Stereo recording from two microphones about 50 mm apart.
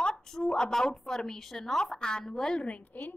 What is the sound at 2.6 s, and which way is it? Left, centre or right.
Speech, left.